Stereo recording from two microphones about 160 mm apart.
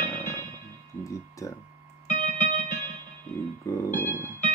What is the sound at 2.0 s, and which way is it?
Music, 50° left (ahead or behind).